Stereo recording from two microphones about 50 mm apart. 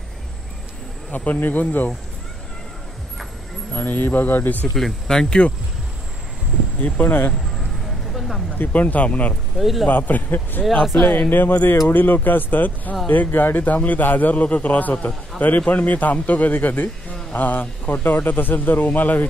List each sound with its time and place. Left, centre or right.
1.1 s a man's voice: left
3.7 s a man's voice: left
4.7 s speech: centre
6.8 s a man's voice: left
8.1 s a sound: centre
8.5 s a man's voice: left
9.6 s a man's voice: centre
9.8 s a man's voice: left